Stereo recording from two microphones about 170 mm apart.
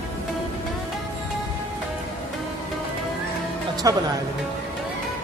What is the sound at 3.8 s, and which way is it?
Speech, 20° right (ahead or behind).